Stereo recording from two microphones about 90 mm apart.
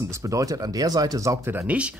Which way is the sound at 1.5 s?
20° right (ahead or behind).